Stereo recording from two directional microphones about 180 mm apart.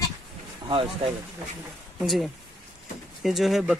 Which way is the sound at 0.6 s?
25° right (ahead or behind).